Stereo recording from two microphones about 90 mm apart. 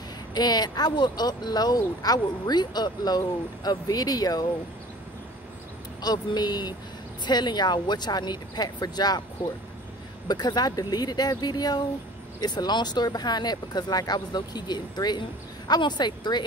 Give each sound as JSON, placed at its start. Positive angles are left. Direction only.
{"t": 0.3, "sound": "speech", "side_deg": 50}
{"t": 6.0, "sound": "speech", "side_deg": 50}